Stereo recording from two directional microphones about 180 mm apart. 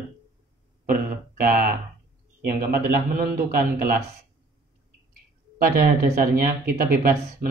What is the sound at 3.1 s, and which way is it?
Speech, 55° right (ahead or behind).